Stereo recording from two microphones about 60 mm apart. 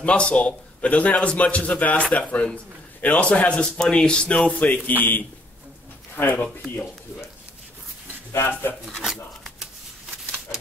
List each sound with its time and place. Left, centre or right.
0.0 s a man's voice: left
8.4 s a man's voice: left